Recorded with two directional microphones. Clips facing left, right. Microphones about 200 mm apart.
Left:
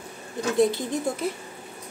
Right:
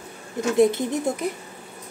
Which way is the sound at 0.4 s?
20° right (ahead or behind).